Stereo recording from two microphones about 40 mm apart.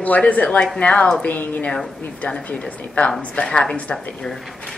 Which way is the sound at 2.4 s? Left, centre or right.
Left.